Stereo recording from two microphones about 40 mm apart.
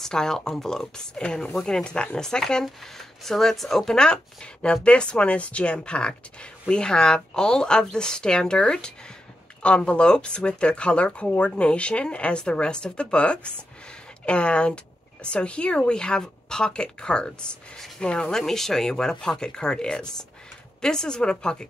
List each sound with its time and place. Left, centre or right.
0.0 s speech: centre
17.7 s speech: centre
18.0 s speech: left
18.3 s speech: centre